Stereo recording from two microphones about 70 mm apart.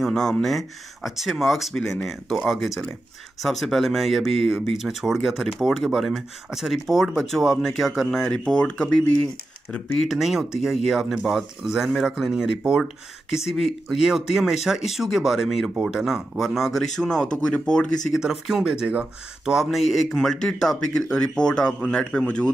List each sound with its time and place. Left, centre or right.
0.0 s speech: centre
8.2 s speech: centre
10.0 s speech: centre
18.1 s speech: centre
19.5 s speech: centre